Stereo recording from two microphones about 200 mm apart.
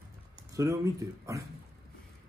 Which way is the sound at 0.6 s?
15° right (ahead or behind).